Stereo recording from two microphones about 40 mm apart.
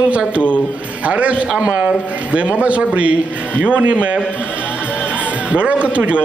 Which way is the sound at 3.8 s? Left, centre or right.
Right.